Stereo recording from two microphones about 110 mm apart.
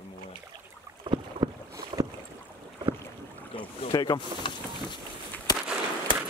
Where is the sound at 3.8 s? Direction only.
45° left (ahead or behind).